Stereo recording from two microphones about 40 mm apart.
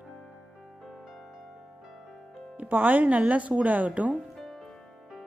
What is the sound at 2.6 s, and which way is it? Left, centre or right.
Speech, right.